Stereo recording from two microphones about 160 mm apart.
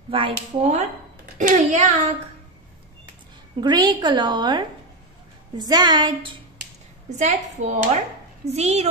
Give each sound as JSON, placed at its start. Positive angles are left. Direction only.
{"t": 0.1, "sound": "speech", "side_deg": -35}
{"t": 1.4, "sound": "speech", "side_deg": -50}
{"t": 3.5, "sound": "a woman's voice", "side_deg": -25}
{"t": 7.2, "sound": "speech", "side_deg": -45}